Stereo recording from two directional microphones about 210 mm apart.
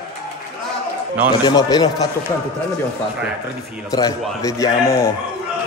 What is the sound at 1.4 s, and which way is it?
Speech, 20° left (ahead or behind).